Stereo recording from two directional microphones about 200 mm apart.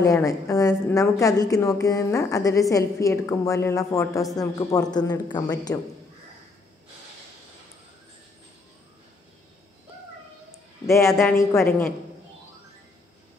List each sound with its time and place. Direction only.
0.0 s a woman's voice: 15° left (ahead or behind)
10.9 s a woman's voice: 15° left (ahead or behind)